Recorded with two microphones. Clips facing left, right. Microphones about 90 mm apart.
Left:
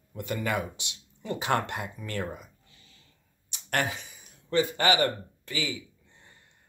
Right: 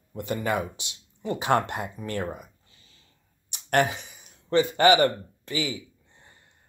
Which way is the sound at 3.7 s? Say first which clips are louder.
Right 6 dB; 25° right (ahead or behind).